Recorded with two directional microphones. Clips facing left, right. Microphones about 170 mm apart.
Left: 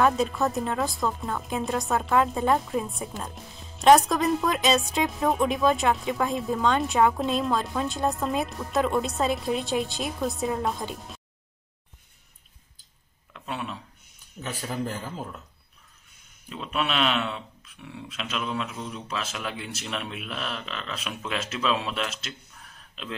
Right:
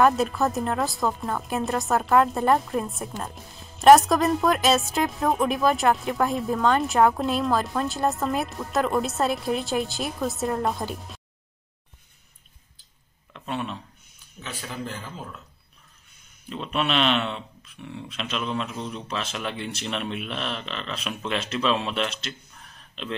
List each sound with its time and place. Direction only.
0.0 s a woman's voice: centre (ahead or behind)
13.3 s a sound: 5° left (ahead or behind)
14.4 s a man's voice: 45° left (ahead or behind)
16.4 s a woman's voice: 5° left (ahead or behind)